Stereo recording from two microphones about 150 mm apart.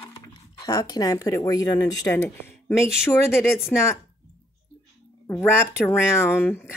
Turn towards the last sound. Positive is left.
turn(degrees=15)  # may be behind; listen again after turning